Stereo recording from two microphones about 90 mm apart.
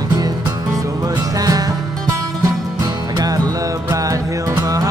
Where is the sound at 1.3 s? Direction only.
45° right (ahead or behind).